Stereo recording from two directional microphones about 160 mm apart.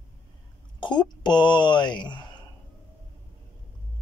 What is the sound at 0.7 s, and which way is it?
Speech, 30° left (ahead or behind).